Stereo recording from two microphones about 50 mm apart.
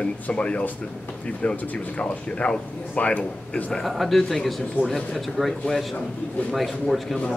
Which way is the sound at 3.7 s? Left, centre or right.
Centre.